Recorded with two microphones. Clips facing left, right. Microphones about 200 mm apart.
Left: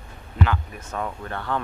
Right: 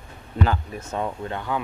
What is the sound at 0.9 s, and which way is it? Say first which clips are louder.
Speech: right 2 dB; 25° right (ahead or behind).